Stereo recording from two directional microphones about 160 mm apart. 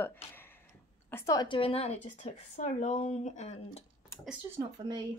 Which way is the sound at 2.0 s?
45° left (ahead or behind).